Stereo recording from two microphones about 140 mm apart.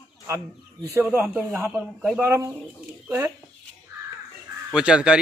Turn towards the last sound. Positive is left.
turn(degrees=-5)  # may be behind; listen again after turning